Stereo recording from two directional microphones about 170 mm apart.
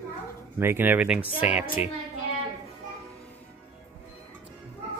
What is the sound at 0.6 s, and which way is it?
Speech, 10° right (ahead or behind).